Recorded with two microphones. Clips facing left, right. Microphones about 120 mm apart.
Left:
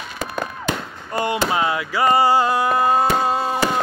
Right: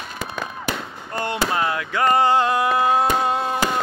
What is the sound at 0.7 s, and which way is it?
Fireworks, 10° left (ahead or behind).